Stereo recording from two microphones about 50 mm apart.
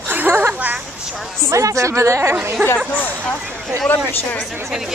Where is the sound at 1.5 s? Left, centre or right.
Right.